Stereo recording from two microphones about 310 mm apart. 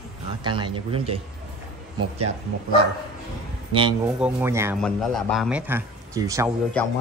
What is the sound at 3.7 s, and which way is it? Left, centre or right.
Speech, centre.